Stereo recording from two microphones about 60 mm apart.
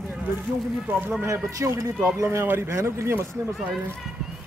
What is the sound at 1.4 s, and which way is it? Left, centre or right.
Speech, right.